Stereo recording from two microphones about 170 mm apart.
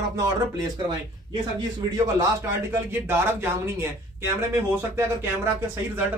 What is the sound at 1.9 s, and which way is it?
Speech, 15° right (ahead or behind).